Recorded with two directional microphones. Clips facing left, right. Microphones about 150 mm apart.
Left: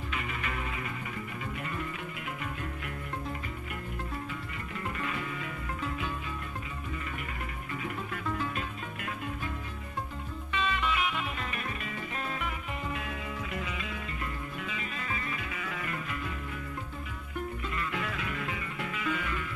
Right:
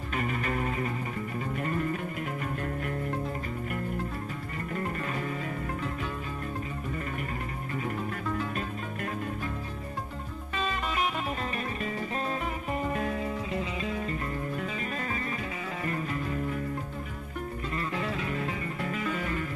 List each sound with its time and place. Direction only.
0.1 s music: 45° right (ahead or behind)
4.7 s music: 40° right (ahead or behind)
10.5 s music: 40° right (ahead or behind)
17.7 s music: 35° right (ahead or behind)